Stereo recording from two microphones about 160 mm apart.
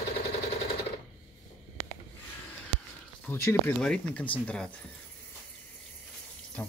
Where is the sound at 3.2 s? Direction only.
15° left (ahead or behind).